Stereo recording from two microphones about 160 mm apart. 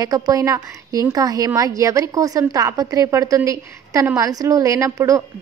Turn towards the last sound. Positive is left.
turn(degrees=-20)  # may be behind; listen again after turning